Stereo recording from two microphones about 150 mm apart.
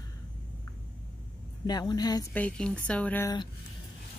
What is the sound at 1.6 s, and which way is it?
Speech, 25° left (ahead or behind).